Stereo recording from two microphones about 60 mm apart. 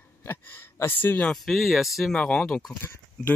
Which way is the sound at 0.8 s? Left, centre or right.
Left.